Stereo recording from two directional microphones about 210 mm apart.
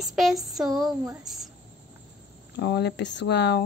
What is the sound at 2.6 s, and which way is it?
Speech, 55° left (ahead or behind).